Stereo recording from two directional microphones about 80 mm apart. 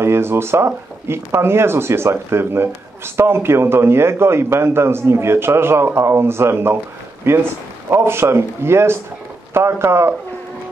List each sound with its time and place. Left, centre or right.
0.0 s a man's voice: right